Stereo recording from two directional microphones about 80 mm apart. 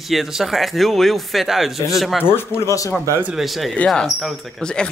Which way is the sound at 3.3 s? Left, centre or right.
Centre.